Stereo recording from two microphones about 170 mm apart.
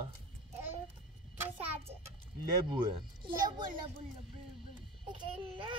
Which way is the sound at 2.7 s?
30° right (ahead or behind).